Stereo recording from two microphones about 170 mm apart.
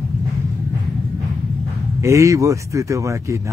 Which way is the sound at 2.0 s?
20° right (ahead or behind).